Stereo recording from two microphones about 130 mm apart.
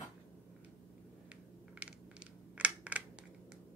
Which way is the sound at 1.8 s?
10° right (ahead or behind).